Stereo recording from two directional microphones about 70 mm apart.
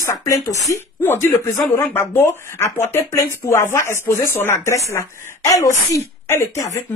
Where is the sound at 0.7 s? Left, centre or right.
Left.